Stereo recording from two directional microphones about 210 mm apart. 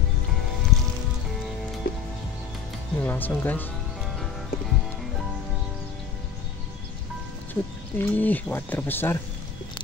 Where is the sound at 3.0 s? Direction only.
10° left (ahead or behind).